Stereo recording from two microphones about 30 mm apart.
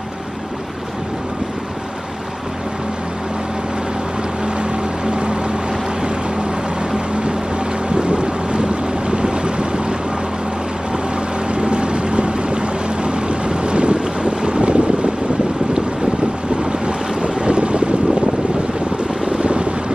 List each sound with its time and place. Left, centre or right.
5.0 s boat: right
7.9 s boat: right
11.5 s boat: right
16.8 s boat: right
19.2 s vehicle: right